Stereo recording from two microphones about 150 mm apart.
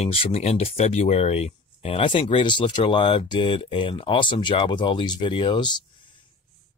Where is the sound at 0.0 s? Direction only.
40° left (ahead or behind).